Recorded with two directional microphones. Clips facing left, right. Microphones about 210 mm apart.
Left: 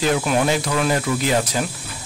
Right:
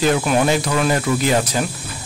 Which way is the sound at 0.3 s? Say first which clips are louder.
Right 2 dB; 50° right (ahead or behind).